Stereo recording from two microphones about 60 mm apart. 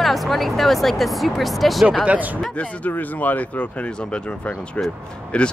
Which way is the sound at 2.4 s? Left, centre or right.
Left.